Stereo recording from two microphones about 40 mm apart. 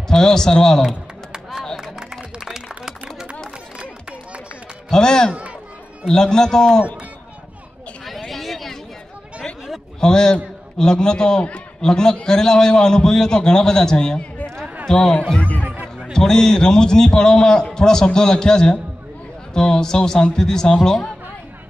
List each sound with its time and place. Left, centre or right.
0.1 s a man's voice: centre
1.8 s a sound: centre
4.9 s a man's voice: centre
8.0 s a sound: centre
9.9 s a man's voice: centre
15.6 s music: right
16.0 s a man's voice: centre